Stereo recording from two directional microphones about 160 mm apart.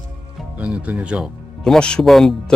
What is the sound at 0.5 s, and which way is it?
Speech, 5° right (ahead or behind).